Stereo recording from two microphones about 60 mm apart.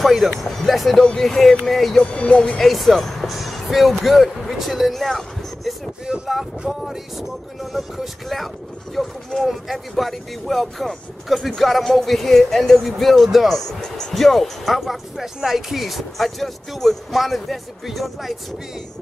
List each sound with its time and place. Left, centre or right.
0.0 s speech: centre
2.0 s speech: centre
2.6 s speech: centre